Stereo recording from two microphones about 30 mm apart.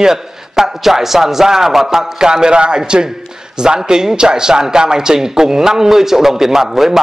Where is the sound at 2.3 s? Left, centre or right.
Right.